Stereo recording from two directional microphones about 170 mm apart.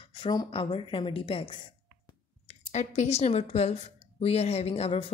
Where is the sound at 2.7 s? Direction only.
45° left (ahead or behind).